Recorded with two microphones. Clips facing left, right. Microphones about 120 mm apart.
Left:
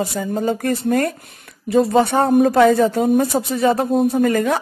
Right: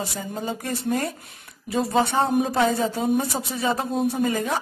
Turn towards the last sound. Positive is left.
turn(degrees=55)  # may be behind; listen again after turning